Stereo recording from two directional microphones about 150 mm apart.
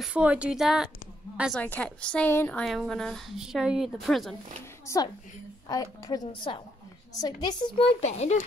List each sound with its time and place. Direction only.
0.0 s a woman's voice: 10° right (ahead or behind)
1.5 s a woman's voice: 10° left (ahead or behind)
4.8 s a woman's voice: 25° left (ahead or behind)
8.0 s a child's voice: 50° left (ahead or behind)